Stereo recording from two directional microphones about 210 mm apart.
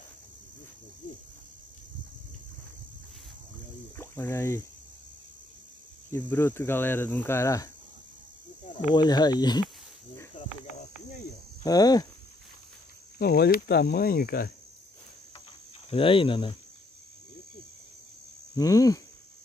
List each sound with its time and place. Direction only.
3.9 s a sound: 10° left (ahead or behind)
6.1 s cricket: 10° left (ahead or behind)
8.9 s speech: 20° left (ahead or behind)
10.4 s cricket: 35° left (ahead or behind)
11.6 s cricket: 15° left (ahead or behind)
13.2 s speech: 45° left (ahead or behind)
15.9 s speech: 25° left (ahead or behind)
18.5 s cricket: 15° left (ahead or behind)